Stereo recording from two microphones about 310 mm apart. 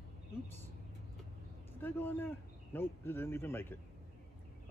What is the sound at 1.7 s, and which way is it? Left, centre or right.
Speech, centre.